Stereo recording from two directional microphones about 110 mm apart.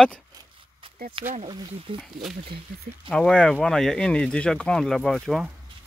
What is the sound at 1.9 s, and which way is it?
Speech, 55° right (ahead or behind).